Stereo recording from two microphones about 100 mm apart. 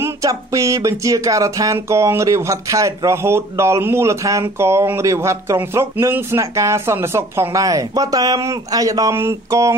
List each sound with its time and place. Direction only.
0.0 s speech: 35° right (ahead or behind)